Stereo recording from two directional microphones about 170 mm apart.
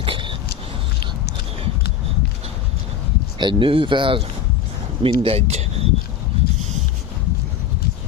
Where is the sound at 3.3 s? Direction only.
30° right (ahead or behind).